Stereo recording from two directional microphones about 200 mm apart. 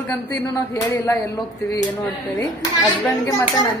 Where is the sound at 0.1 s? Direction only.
15° left (ahead or behind).